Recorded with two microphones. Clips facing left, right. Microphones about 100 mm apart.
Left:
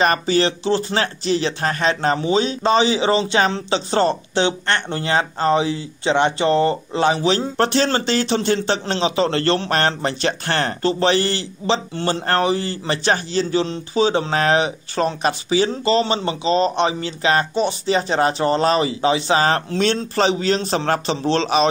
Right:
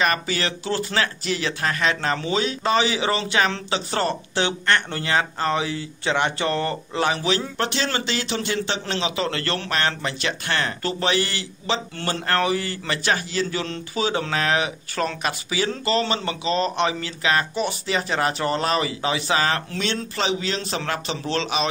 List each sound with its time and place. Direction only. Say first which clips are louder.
0.0 s speech: left 6 dB; 30° left (ahead or behind)
9.7 s speech: left 5 dB; 40° left (ahead or behind)
10.8 s speech: left 9 dB; 30° left (ahead or behind)